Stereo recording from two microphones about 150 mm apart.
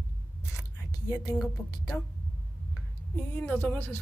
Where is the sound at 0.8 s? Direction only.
25° left (ahead or behind).